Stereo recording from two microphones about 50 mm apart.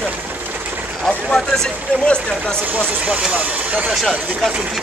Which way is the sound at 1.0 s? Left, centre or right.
Centre.